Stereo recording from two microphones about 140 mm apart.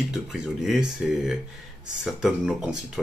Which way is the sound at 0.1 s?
5° right (ahead or behind).